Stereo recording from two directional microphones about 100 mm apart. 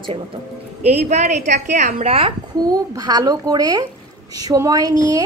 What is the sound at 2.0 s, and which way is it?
Speech, 70° right (ahead or behind).